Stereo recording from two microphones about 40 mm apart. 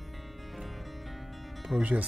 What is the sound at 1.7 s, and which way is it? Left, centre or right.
Speech, right.